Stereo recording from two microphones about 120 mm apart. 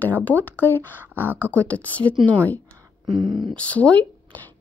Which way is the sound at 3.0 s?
40° right (ahead or behind).